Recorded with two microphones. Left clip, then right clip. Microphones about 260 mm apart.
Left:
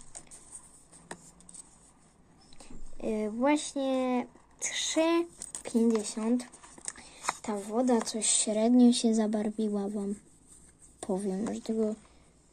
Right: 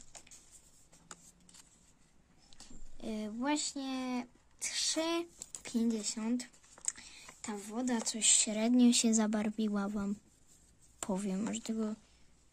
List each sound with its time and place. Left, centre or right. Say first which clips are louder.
2.6 s speech: left 10 dB; right
9.8 s speech: left 5 dB; right
11.2 s speech: left 5 dB; right